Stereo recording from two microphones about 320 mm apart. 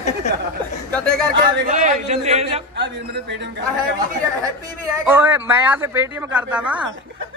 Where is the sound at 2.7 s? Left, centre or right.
Right.